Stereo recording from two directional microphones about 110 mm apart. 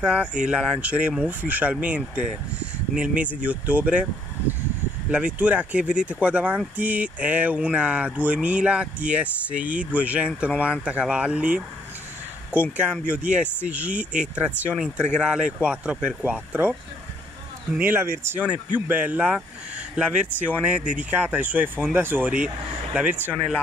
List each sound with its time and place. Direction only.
0.0 s speech: 10° right (ahead or behind)
5.1 s speech: 15° right (ahead or behind)
17.7 s speech: 20° right (ahead or behind)